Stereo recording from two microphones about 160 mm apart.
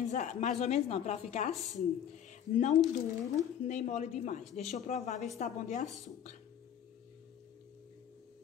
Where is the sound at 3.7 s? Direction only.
50° left (ahead or behind).